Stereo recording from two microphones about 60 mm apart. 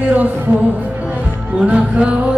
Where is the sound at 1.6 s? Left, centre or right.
Centre.